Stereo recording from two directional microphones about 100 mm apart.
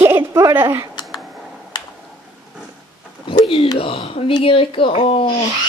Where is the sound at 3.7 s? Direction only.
65° left (ahead or behind).